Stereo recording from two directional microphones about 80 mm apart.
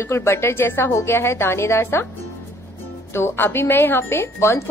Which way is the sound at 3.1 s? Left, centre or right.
Left.